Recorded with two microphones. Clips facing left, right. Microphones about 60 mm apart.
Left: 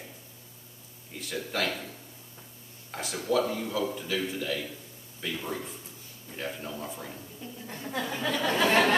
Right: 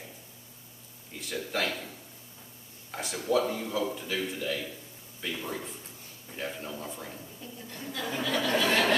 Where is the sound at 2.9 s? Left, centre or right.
Centre.